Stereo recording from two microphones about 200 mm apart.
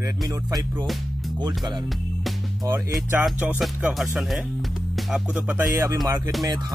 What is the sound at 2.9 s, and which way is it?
Speech, 5° right (ahead or behind).